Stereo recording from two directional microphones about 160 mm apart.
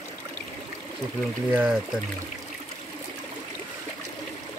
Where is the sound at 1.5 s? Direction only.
10° right (ahead or behind).